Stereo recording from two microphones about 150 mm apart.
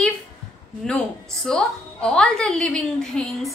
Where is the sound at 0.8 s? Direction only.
5° left (ahead or behind).